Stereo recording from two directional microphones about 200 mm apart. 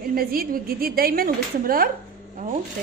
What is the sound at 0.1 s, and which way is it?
A woman's voice, 45° right (ahead or behind).